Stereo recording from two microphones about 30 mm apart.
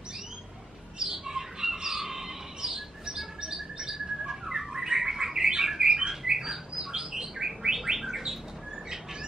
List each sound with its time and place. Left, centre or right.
0.9 s bird: centre